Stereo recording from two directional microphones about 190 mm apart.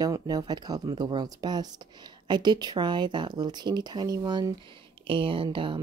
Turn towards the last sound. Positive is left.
turn(degrees=-25)  # may be behind; listen again after turning